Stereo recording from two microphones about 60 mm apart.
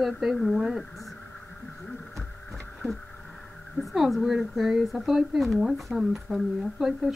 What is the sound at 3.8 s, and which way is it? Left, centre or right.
Speech, centre.